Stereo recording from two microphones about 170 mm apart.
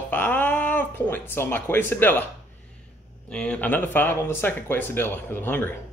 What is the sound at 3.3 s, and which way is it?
Speech, 5° left (ahead or behind).